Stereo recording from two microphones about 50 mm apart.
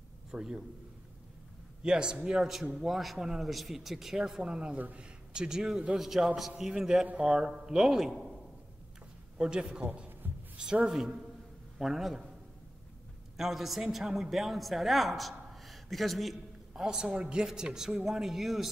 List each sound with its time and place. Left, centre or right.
0.3 s speech: centre
1.8 s speech: centre
2.4 s speech: centre
4.2 s speech: centre
4.7 s a man's voice: right
5.3 s speech: centre
5.9 s speech: centre
9.4 s speech: centre
10.2 s a sound: right
10.6 s speech: centre
11.8 s speech: centre
13.4 s a man's voice: centre
16.7 s speech: centre